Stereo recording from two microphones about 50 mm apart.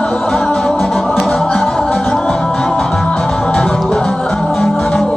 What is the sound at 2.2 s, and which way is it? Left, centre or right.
Music, centre.